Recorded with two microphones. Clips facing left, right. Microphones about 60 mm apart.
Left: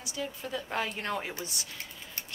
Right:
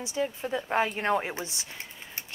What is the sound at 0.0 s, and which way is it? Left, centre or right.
Speech, right.